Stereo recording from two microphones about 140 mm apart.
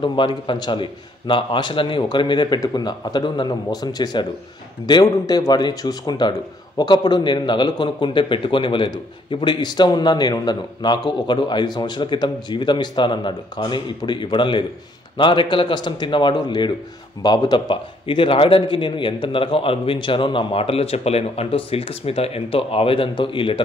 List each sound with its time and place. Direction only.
0.0 s a man's voice: 35° left (ahead or behind)